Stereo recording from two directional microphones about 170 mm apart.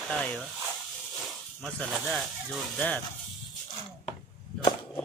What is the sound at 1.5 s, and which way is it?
Speech, 5° left (ahead or behind).